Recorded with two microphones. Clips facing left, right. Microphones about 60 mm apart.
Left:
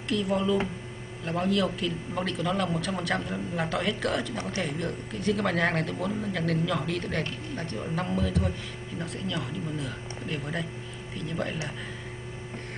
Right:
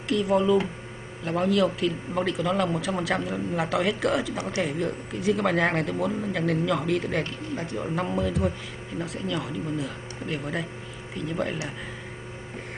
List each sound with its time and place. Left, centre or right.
0.1 s speech: centre
4.4 s speech: centre
4.6 s speech: centre